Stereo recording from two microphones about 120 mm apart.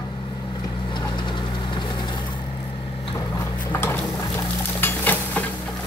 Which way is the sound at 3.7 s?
20° left (ahead or behind).